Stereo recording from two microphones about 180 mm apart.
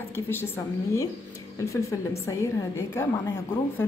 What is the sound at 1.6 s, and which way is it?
A woman's voice, 15° left (ahead or behind).